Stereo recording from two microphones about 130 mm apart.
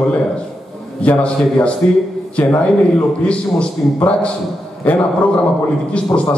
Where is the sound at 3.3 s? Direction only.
10° left (ahead or behind).